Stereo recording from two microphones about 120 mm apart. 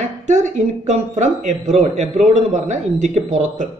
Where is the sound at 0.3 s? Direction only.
75° right (ahead or behind).